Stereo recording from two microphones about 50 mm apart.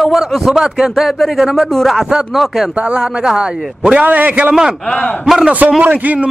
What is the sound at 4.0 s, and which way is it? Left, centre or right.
Speech, right.